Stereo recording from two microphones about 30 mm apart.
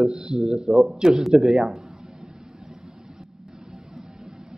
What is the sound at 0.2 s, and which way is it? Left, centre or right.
Speech, right.